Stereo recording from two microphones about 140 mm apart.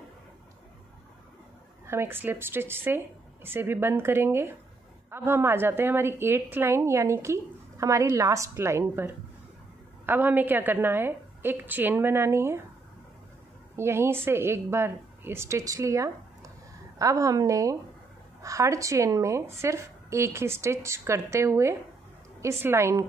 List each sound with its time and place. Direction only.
1.9 s a woman's voice: 15° right (ahead or behind)
13.7 s a woman's voice: 20° right (ahead or behind)